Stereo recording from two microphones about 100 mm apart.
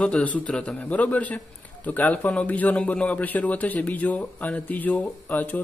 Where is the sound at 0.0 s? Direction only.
10° left (ahead or behind).